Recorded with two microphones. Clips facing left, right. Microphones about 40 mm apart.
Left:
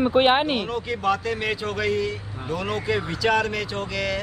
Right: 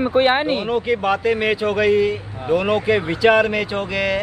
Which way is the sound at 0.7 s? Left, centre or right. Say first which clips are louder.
Right 5 dB; right.